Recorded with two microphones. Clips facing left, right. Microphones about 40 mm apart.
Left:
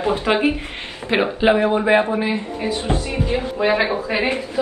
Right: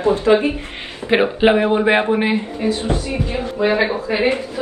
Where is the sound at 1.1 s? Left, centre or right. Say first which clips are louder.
Right 3 dB; centre.